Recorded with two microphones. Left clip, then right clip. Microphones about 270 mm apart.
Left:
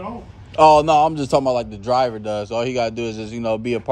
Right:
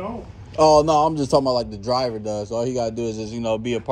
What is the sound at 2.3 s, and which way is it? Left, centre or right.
Speech, centre.